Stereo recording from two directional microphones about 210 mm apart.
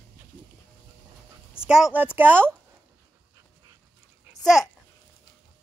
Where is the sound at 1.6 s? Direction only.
5° right (ahead or behind).